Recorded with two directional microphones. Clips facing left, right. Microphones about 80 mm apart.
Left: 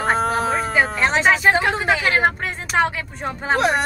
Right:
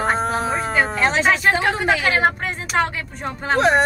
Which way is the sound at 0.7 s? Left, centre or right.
Centre.